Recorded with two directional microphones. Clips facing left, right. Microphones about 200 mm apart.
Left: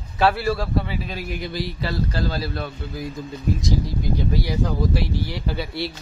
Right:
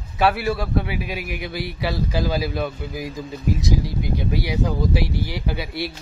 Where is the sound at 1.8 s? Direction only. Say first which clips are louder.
Right 4 dB; 15° right (ahead or behind).